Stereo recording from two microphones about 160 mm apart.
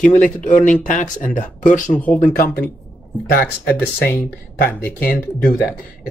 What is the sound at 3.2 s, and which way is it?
Speech, 75° left (ahead or behind).